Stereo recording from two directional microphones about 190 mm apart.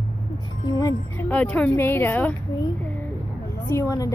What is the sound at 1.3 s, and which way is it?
A woman's voice, 5° left (ahead or behind).